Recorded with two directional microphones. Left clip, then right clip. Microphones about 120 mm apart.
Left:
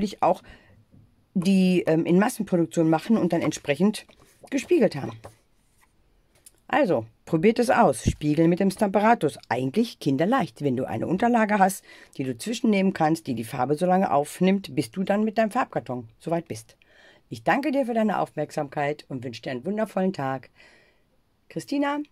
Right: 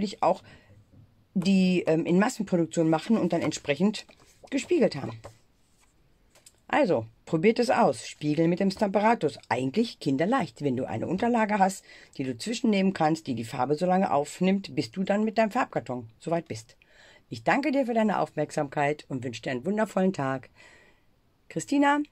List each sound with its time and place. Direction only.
0.0 s speech: 45° left (ahead or behind)
6.7 s speech: 30° left (ahead or behind); by 22.1 s 5° right (ahead or behind)